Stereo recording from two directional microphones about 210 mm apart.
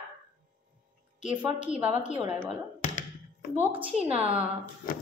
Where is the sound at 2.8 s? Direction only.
35° left (ahead or behind).